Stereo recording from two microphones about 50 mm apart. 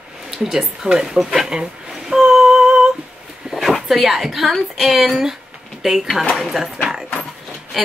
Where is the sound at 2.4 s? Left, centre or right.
Centre.